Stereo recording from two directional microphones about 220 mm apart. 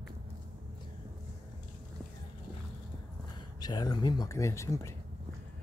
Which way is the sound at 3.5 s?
20° left (ahead or behind).